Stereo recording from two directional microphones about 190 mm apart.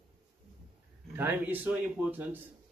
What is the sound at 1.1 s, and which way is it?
Speech, 10° right (ahead or behind).